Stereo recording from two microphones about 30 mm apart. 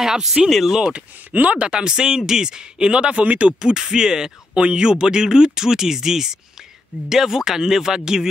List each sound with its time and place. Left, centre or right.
0.0 s speech: centre
1.3 s speech: right
1.6 s speech: right
2.9 s speech: right
3.6 s speech: right
4.6 s speech: right; by 8.3 s centre